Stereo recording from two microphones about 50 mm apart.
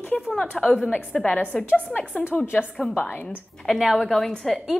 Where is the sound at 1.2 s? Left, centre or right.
Left.